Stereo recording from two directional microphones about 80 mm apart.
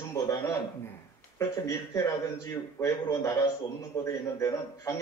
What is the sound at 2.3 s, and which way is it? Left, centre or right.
Speech, left.